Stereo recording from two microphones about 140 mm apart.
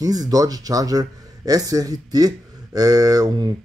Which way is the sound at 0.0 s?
25° right (ahead or behind).